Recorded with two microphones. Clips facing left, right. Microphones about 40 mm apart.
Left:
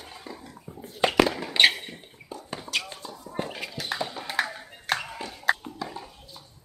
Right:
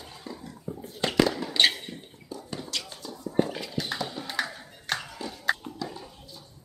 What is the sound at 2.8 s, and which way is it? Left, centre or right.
Basketball bounce, left.